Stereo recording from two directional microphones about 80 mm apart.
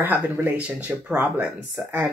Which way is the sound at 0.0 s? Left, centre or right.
Right.